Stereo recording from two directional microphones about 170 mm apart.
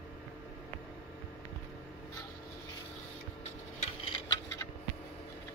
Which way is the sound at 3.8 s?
35° left (ahead or behind).